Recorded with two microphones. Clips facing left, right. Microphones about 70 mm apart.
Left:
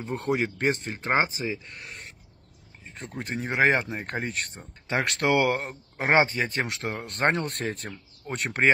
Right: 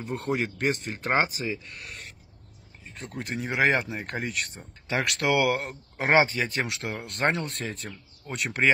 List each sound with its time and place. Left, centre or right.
0.0 s speech: left
0.9 s speech: left
2.8 s a sound: left
3.2 s speech: left
7.4 s speech: left
8.3 s speech: left